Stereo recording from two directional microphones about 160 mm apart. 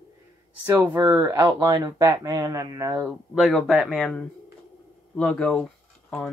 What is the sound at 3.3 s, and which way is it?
Speech, centre (ahead or behind).